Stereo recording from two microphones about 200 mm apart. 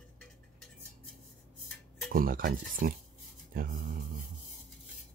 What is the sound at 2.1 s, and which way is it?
Speech, 45° right (ahead or behind).